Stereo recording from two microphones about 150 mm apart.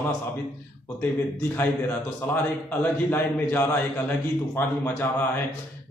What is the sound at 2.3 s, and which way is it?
A man's voice, 15° left (ahead or behind).